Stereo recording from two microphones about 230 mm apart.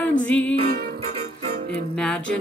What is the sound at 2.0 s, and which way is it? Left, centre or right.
Music, centre.